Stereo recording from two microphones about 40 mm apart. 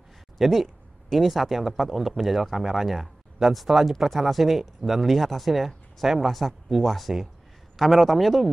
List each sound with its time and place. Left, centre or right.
0.4 s speech: centre